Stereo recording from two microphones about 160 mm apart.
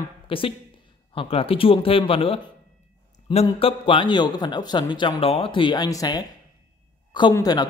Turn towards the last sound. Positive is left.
turn(degrees=25)  # may be behind; listen again after turning